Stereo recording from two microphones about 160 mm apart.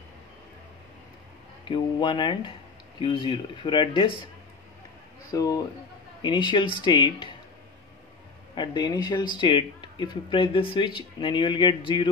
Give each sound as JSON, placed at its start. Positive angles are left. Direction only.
{"t": 1.6, "sound": "speech", "side_deg": 30}
{"t": 5.3, "sound": "speech", "side_deg": 20}
{"t": 8.5, "sound": "speech", "side_deg": 25}